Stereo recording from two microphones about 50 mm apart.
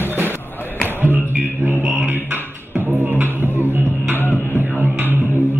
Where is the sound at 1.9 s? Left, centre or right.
Right.